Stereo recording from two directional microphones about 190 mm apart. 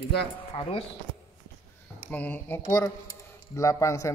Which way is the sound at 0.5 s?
30° left (ahead or behind).